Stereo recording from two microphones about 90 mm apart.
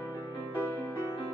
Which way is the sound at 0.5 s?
20° left (ahead or behind).